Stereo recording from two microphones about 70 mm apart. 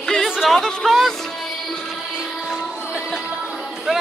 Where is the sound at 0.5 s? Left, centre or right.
Centre.